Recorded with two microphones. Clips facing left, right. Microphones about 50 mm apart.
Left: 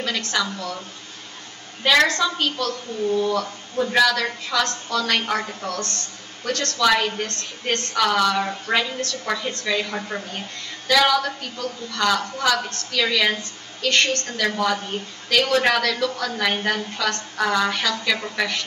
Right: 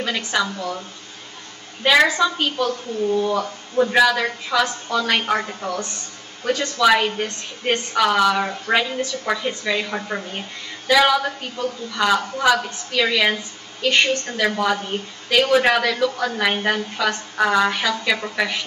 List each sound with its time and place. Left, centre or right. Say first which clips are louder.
0.0 s a woman's voice: right 2 dB; centre